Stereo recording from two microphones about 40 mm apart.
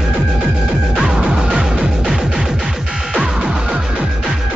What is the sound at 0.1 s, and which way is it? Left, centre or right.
Music, right.